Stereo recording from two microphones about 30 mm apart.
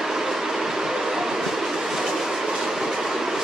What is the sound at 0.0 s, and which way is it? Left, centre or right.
Train, centre.